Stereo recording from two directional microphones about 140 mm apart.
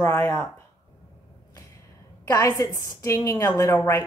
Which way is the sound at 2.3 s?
25° left (ahead or behind).